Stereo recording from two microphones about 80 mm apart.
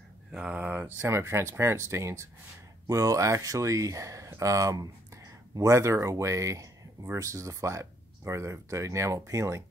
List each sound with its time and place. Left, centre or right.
0.3 s speech: centre
0.9 s speech: right